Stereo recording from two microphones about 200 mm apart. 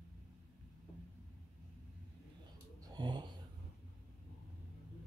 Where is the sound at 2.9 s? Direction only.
20° right (ahead or behind).